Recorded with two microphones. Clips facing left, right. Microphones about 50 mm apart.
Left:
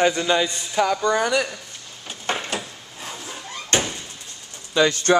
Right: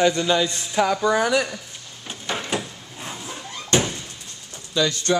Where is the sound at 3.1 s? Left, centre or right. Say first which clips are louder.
Right 1 dB; centre.